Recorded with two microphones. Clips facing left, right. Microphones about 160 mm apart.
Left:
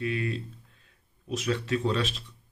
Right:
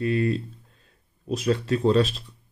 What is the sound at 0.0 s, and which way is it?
Speech, 40° right (ahead or behind).